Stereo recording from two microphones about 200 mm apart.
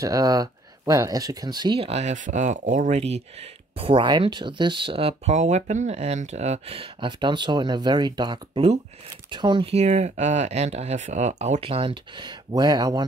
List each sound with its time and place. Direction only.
0.0 s speech: 15° right (ahead or behind)